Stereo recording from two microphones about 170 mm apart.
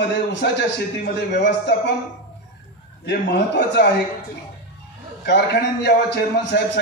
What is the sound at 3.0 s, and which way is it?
Speech, 85° left.